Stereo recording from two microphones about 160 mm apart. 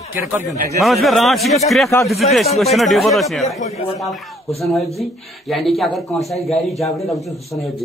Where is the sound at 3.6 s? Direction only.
40° left (ahead or behind).